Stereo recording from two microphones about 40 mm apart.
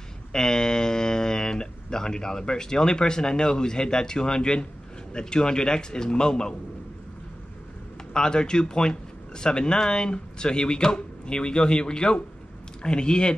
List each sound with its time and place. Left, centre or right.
0.3 s speech: centre
8.1 s speech: left